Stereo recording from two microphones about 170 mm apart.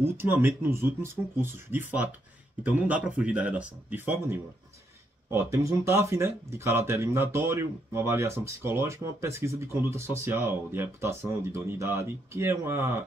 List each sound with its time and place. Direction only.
0.0 s speech: 15° right (ahead or behind)